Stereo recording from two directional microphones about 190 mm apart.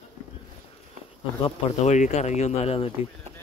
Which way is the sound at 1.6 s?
40° left (ahead or behind).